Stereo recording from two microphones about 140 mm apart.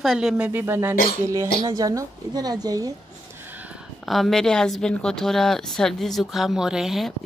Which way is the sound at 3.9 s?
Centre (ahead or behind).